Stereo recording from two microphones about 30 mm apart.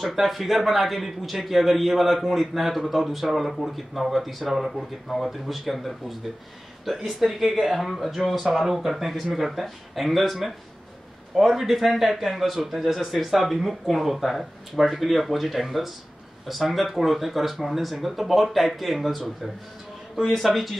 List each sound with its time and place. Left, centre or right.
0.0 s speech: centre
11.3 s a man's voice: centre